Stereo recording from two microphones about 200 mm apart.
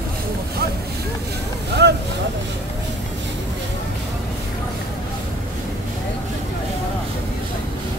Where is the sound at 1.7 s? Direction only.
60° right (ahead or behind).